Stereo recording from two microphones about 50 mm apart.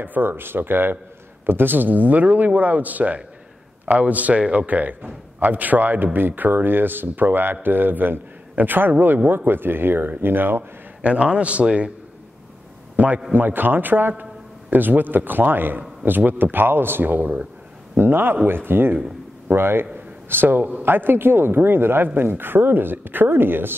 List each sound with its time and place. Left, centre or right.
0.0 s a man's voice: right
11.0 s a man's voice: right
12.9 s a man's voice: right
17.9 s a man's voice: right